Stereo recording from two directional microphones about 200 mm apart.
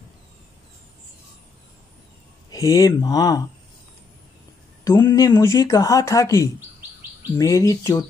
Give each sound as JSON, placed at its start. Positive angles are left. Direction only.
{"t": 2.5, "sound": "speech", "side_deg": 15}
{"t": 4.8, "sound": "speech", "side_deg": 15}